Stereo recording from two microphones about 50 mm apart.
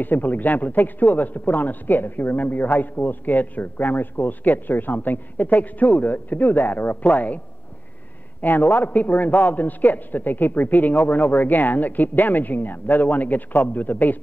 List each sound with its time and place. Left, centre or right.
0.0 s a man's voice: left
8.4 s a man's voice: left